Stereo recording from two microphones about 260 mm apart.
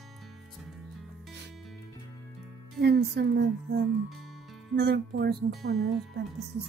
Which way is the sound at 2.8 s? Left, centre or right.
Right.